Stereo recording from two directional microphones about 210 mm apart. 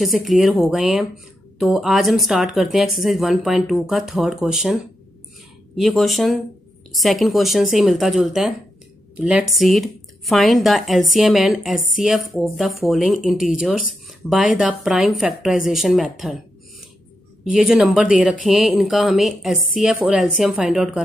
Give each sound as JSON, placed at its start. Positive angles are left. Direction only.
{"t": 0.0, "sound": "speech", "side_deg": 0}
{"t": 5.8, "sound": "a woman's voice", "side_deg": 0}
{"t": 17.5, "sound": "speech", "side_deg": 0}